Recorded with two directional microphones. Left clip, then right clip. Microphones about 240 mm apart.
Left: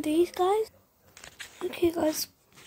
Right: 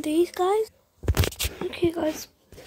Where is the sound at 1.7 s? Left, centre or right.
Centre.